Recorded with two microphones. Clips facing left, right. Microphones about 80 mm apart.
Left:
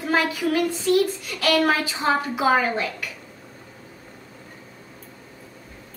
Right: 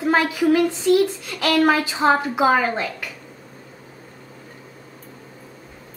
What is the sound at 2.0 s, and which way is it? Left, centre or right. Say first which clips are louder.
Speech: right 5 dB; right.